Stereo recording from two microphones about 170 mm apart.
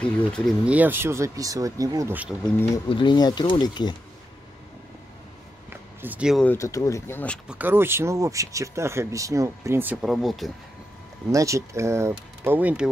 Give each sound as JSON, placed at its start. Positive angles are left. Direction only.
{"t": 0.0, "sound": "speech", "side_deg": 5}
{"t": 0.7, "sound": "speech", "side_deg": -10}
{"t": 2.9, "sound": "speech", "side_deg": 25}
{"t": 5.7, "sound": "a sound", "side_deg": -10}
{"t": 6.4, "sound": "speech", "side_deg": 15}
{"t": 7.4, "sound": "speech", "side_deg": -10}
{"t": 10.0, "sound": "speech", "side_deg": 0}
{"t": 11.3, "sound": "speech", "side_deg": -20}